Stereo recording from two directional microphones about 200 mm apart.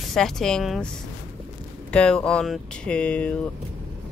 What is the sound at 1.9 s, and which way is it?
Speech, 5° left (ahead or behind).